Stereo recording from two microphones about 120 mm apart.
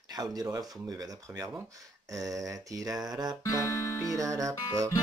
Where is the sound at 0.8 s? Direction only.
30° right (ahead or behind).